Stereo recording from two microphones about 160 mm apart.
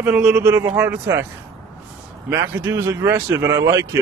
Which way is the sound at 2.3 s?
15° right (ahead or behind).